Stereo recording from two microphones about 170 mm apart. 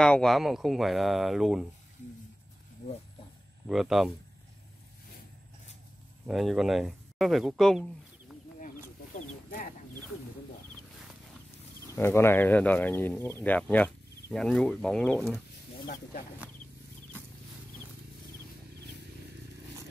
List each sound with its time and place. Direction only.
0.0 s speech: 5° left (ahead or behind)
3.6 s speech: centre (ahead or behind)
6.2 s speech: centre (ahead or behind)
11.9 s speech: 15° left (ahead or behind)
15.9 s speech: 55° left (ahead or behind)